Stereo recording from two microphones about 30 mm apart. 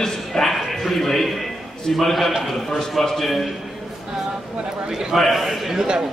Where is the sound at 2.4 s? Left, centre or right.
Centre.